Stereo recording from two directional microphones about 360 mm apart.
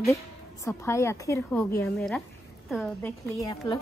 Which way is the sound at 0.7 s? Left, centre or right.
Centre.